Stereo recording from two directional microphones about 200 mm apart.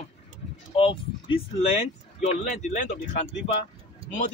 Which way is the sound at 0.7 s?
25° left (ahead or behind).